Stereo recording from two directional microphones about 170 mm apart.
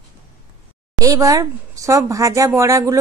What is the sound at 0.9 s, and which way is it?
Speech, 20° right (ahead or behind).